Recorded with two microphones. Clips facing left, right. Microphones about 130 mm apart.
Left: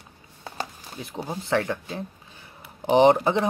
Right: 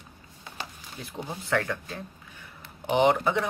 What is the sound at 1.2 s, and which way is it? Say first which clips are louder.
Speech: left 3 dB; 20° left (ahead or behind).